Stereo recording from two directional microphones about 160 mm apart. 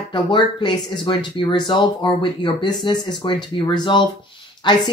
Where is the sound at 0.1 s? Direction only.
30° left (ahead or behind).